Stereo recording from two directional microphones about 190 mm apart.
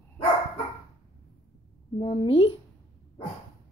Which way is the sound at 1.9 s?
30° left (ahead or behind).